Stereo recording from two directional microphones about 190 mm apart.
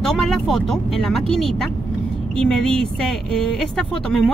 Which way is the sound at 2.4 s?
5° left (ahead or behind).